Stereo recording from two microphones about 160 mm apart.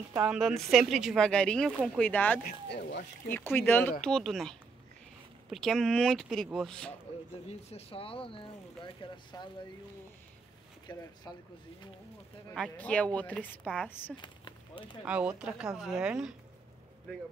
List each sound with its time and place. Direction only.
0.1 s a woman's voice: 10° right (ahead or behind)
0.4 s speech: centre (ahead or behind)
2.4 s speech: 85° left
3.3 s speech: 15° left (ahead or behind)
4.0 s speech: 5° left (ahead or behind)
7.4 s speech: 40° left (ahead or behind)
10.9 s speech: 25° left (ahead or behind)
12.5 s speech: 5° left (ahead or behind)
14.1 s a sound: 30° left (ahead or behind)
15.0 s speech: 10° right (ahead or behind)